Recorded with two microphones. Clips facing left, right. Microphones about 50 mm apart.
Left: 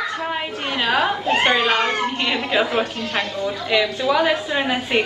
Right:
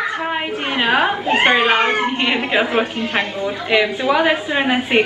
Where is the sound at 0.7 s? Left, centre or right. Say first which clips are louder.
Right 3 dB; right.